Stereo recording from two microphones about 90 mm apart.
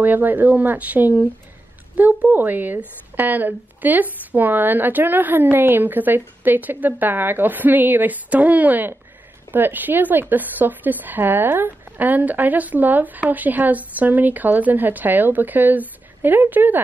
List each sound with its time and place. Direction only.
0.0 s a woman's voice: 20° right (ahead or behind)